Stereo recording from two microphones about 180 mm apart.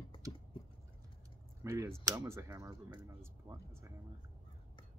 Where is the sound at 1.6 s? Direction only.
15° right (ahead or behind).